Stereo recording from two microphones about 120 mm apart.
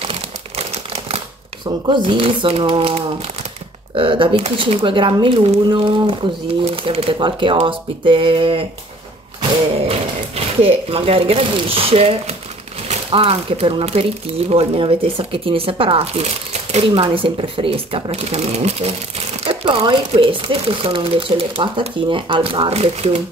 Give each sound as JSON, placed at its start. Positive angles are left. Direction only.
{"t": 0.0, "sound": "crumpling", "side_deg": -55}
{"t": 1.9, "sound": "speech", "side_deg": -40}
{"t": 9.8, "sound": "speech", "side_deg": -55}